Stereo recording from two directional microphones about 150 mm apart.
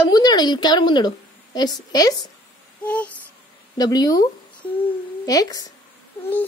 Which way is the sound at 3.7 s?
25° left (ahead or behind).